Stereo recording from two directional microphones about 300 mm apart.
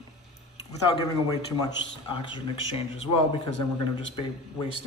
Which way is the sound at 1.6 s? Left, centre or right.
Centre.